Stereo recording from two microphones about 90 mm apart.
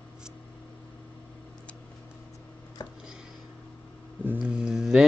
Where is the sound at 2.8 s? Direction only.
50° left (ahead or behind).